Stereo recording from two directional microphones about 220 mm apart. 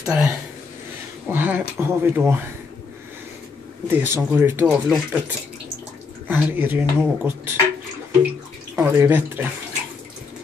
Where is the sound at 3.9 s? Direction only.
10° right (ahead or behind).